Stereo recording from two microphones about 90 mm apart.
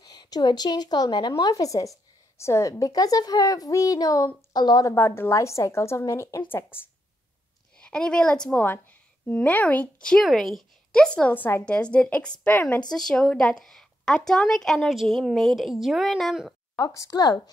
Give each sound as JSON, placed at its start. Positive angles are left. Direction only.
{"t": 0.0, "sound": "a woman's voice", "side_deg": 45}
{"t": 4.6, "sound": "a woman's voice", "side_deg": 50}
{"t": 4.8, "sound": "a woman's voice", "side_deg": 25}
{"t": 7.8, "sound": "a woman's voice", "side_deg": 10}
{"t": 11.3, "sound": "a woman's voice", "side_deg": 20}
{"t": 12.9, "sound": "a woman's voice", "side_deg": 5}
{"t": 16.7, "sound": "a woman's voice", "side_deg": 35}